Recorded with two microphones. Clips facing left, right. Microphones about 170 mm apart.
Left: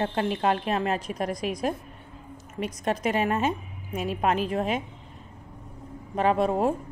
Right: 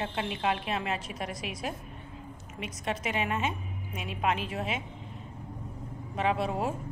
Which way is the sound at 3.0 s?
40° left (ahead or behind).